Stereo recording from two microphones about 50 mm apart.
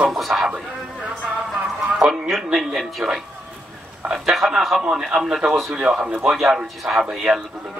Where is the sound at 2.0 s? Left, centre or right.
Centre.